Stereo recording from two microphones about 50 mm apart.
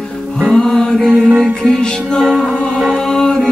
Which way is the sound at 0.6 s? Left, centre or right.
Centre.